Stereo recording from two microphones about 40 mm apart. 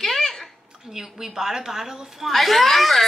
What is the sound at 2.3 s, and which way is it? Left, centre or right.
Speech, centre.